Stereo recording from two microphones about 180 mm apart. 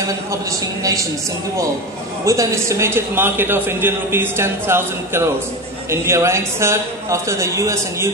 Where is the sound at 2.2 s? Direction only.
15° right (ahead or behind).